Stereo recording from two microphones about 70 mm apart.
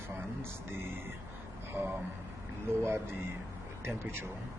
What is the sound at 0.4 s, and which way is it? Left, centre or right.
Speech, right.